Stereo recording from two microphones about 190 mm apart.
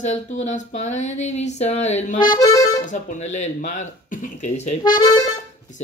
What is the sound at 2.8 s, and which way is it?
Speech, 40° left (ahead or behind).